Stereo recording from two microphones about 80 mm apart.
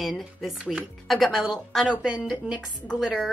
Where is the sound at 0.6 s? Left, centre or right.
Centre.